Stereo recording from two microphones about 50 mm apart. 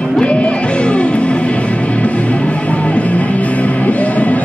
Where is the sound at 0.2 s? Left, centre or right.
Left.